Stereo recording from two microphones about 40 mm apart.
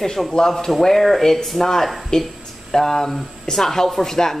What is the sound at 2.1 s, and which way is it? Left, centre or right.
Speech, centre.